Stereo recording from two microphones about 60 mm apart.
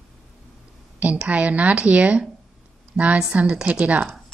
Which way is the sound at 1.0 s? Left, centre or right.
Right.